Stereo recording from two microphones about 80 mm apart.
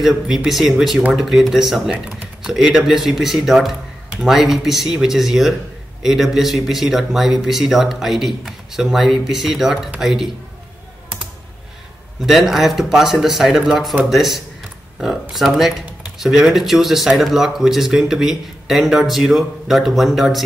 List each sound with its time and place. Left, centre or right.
0.0 s speech: centre
12.3 s speech: centre